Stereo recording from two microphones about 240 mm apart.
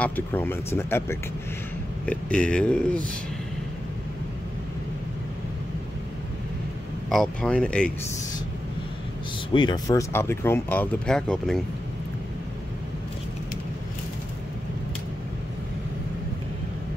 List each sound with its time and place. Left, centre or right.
0.0 s speech: centre
7.1 s speech: centre
9.5 s speech: centre